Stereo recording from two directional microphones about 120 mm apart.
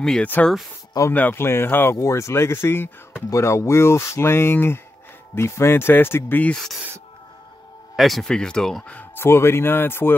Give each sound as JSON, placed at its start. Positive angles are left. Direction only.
{"t": 0.0, "sound": "speech", "side_deg": 5}
{"t": 1.1, "sound": "speech", "side_deg": 15}
{"t": 6.5, "sound": "speech", "side_deg": 5}
{"t": 7.9, "sound": "speech", "side_deg": 0}